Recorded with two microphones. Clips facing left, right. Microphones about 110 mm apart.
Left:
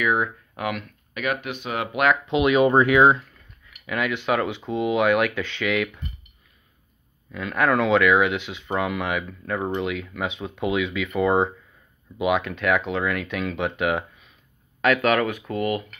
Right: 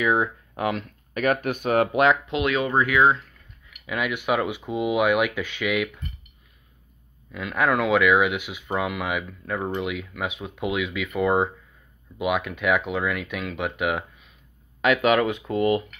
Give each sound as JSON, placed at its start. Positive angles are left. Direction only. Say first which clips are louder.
{"t": 0.0, "sound": "speech", "louder": "right 1 dB", "side_deg": -25}
{"t": 2.2, "sound": "speech", "louder": "left 4 dB", "side_deg": 0}
{"t": 2.5, "sound": "speech", "louder": "left 6 dB", "side_deg": 20}
{"t": 3.8, "sound": "speech", "louder": "left 1 dB", "side_deg": -10}
{"t": 7.3, "sound": "speech", "louder": "left 1 dB", "side_deg": -5}
{"t": 14.8, "sound": "speech", "louder": "even", "side_deg": -15}